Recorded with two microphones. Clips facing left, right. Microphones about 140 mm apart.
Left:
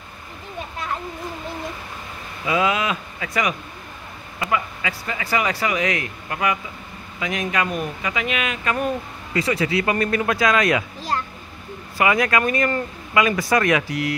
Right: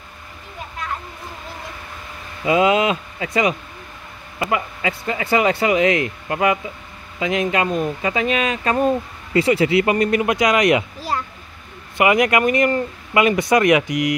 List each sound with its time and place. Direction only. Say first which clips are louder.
2.4 s speech: right 5 dB; 25° right (ahead or behind)
12.0 s speech: right 3 dB; 20° right (ahead or behind)